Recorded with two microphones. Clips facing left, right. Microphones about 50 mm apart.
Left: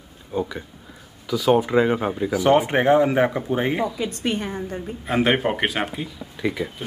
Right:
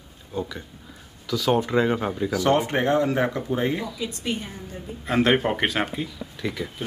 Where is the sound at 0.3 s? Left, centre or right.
Centre.